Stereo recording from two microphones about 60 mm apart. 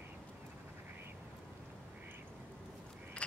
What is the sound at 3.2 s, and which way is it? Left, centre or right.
Vehicle, centre.